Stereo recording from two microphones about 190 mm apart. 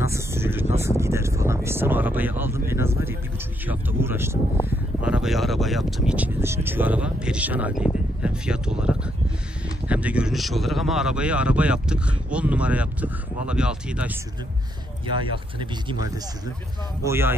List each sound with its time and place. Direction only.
0.0 s a sound: 15° right (ahead or behind)
0.7 s speech: 15° right (ahead or behind)
15.0 s speech: 25° right (ahead or behind)
17.0 s speech: 10° right (ahead or behind)